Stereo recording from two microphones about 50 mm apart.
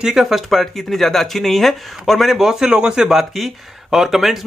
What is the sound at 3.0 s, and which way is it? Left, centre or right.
Speech, centre.